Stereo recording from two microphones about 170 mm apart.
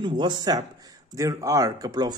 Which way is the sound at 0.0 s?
25° right (ahead or behind).